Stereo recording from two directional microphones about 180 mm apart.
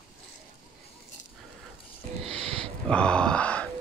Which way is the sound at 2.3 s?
30° right (ahead or behind).